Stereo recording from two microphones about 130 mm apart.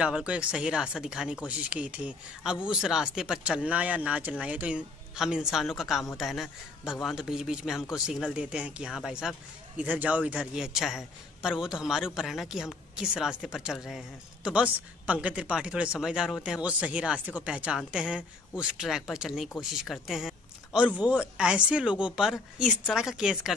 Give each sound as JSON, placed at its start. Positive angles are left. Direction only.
{"t": 0.0, "sound": "speech", "side_deg": -5}